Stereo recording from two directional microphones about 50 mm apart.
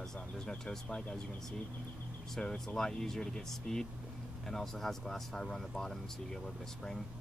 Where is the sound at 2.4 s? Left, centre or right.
Centre.